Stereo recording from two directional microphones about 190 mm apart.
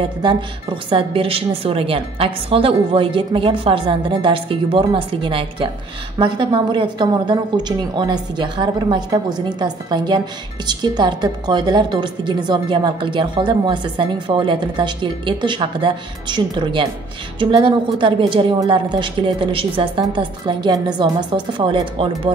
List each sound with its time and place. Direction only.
0.2 s a woman's voice: 25° right (ahead or behind)